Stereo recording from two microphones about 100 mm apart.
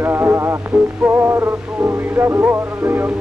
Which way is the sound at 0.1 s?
25° right (ahead or behind).